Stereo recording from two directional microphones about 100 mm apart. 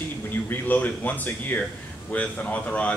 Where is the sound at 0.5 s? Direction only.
20° left (ahead or behind).